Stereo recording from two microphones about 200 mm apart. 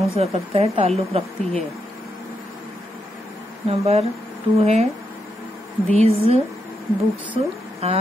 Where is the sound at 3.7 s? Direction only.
30° right (ahead or behind).